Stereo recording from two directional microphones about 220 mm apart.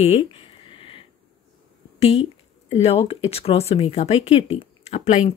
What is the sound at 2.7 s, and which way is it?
Speech, 30° left (ahead or behind).